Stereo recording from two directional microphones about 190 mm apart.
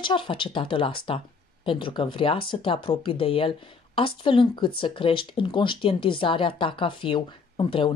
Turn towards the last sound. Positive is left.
turn(degrees=25)  # may be behind; listen again after turning